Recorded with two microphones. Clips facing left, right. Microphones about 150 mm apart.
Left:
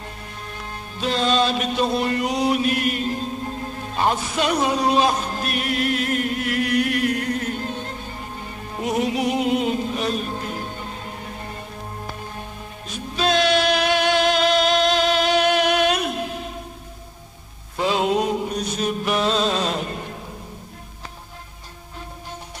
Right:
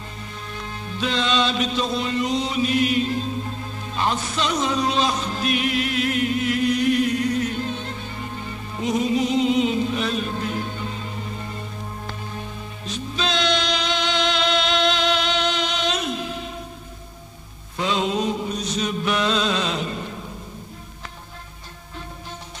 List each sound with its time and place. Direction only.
0.7 s music: 45° left (ahead or behind)
4.0 s speech: 55° left (ahead or behind)
5.0 s music: 50° left (ahead or behind)
8.7 s music: 60° left (ahead or behind); by 10.2 s 45° left (ahead or behind)
13.2 s music: 50° left (ahead or behind)
17.9 s a sound: 60° left (ahead or behind)
18.8 s music: 45° left (ahead or behind)